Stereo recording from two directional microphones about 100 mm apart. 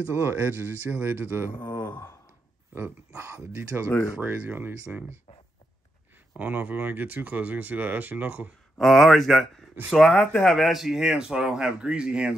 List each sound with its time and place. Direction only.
0.2 s speech: 25° right (ahead or behind)
1.5 s speech: 25° left (ahead or behind)
3.2 s speech: 25° right (ahead or behind)
6.3 s speech: 15° right (ahead or behind)
8.7 s speech: centre (ahead or behind)